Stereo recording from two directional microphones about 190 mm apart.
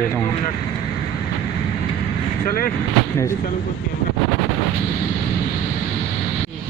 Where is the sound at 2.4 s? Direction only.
50° left (ahead or behind).